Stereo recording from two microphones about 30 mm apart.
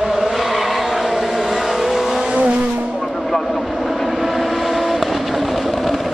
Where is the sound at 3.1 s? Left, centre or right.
Centre.